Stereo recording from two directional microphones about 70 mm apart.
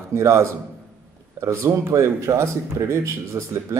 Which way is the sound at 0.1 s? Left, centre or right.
Right.